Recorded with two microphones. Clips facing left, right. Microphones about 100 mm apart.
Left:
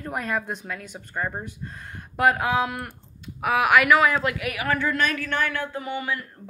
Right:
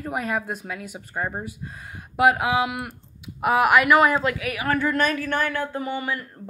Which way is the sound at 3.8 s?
45° right (ahead or behind).